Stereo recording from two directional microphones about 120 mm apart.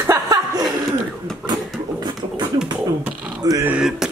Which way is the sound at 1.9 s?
35° right (ahead or behind).